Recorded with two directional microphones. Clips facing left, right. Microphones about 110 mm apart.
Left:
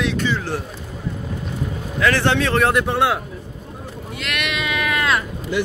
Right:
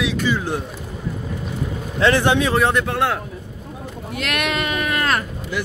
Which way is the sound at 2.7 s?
5° left (ahead or behind).